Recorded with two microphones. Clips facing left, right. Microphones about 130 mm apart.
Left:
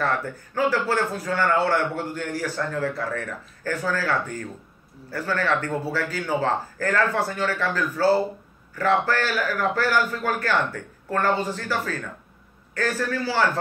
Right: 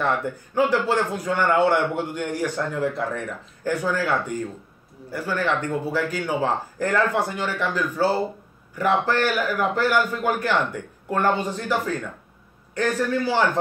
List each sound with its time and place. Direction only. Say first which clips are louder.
0.0 s a man's voice: right 2 dB; 20° right (ahead or behind)